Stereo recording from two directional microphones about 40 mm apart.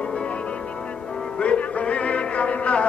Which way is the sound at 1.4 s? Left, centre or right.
Left.